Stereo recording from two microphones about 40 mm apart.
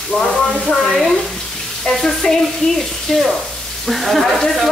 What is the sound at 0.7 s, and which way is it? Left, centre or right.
Speech, centre.